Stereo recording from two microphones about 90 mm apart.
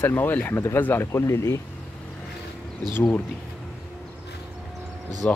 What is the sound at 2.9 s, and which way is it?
Speech, 20° left (ahead or behind).